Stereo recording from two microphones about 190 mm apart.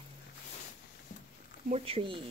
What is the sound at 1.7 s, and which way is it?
Speech, 30° right (ahead or behind).